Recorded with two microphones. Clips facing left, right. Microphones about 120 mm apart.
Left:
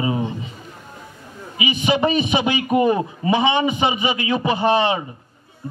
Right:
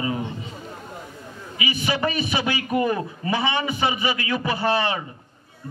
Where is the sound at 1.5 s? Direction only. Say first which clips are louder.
Left 6 dB; 20° left (ahead or behind).